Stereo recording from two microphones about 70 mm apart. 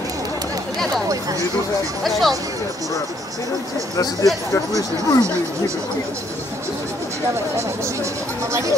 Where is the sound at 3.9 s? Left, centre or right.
Left.